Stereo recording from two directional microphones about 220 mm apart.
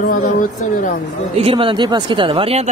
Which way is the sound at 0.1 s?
40° left (ahead or behind).